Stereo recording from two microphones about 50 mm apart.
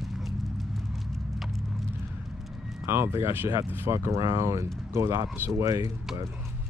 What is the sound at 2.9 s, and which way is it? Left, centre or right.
Speech, right.